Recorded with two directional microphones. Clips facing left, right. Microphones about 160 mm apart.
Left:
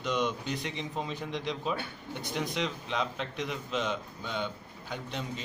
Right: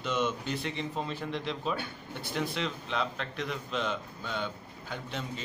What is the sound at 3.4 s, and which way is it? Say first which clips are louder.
Speech: even; 20° left (ahead or behind).